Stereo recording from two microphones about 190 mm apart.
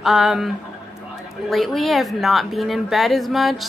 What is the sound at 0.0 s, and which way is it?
Speech, centre (ahead or behind).